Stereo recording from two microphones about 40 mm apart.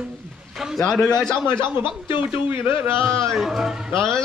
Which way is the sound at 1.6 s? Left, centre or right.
Right.